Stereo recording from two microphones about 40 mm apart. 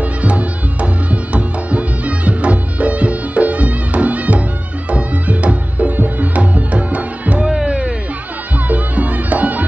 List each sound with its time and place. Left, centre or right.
0.2 s music: right
7.4 s music: right
8.6 s music: right